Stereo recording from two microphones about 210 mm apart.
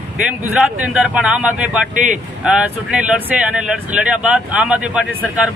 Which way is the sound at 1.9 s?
40° right (ahead or behind).